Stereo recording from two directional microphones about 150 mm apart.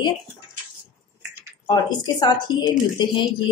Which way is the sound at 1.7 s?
30° left (ahead or behind).